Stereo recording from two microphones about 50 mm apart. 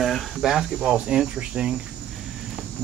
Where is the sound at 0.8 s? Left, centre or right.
Centre.